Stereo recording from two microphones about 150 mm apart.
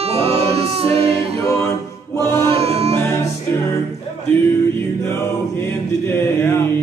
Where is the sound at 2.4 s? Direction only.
40° right (ahead or behind).